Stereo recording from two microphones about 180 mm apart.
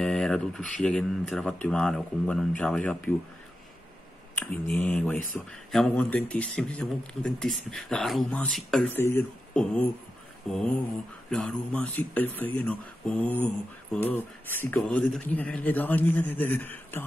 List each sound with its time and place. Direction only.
0.0 s speech: 5° left (ahead or behind)
4.4 s speech: 5° left (ahead or behind)
10.4 s speech: centre (ahead or behind)